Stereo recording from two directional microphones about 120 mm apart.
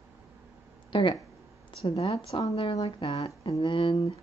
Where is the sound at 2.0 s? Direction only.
55° left (ahead or behind).